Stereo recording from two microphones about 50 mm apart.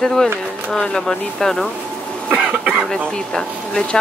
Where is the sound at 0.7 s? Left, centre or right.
Centre.